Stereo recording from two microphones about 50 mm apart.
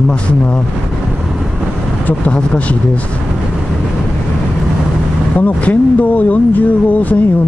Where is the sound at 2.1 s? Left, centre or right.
Left.